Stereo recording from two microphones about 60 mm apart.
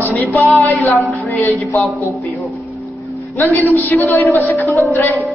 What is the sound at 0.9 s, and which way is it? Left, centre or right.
Music, centre.